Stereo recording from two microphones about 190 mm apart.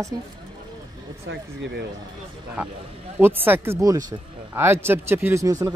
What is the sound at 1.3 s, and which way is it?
Speech, 70° right (ahead or behind).